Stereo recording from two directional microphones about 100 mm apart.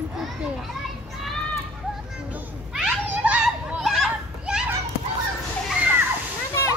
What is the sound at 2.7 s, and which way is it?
Children playing, 10° right (ahead or behind).